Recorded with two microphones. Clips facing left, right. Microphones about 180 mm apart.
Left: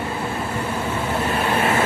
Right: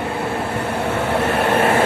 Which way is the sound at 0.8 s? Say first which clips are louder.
Right 6 dB; 70° right (ahead or behind).